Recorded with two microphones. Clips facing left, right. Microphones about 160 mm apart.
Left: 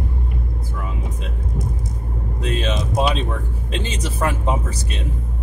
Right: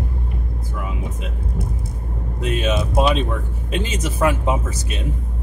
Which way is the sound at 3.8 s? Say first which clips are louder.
Right 2 dB; 30° left (ahead or behind).